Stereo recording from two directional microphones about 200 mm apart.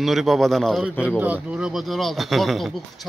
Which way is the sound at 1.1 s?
5° right (ahead or behind).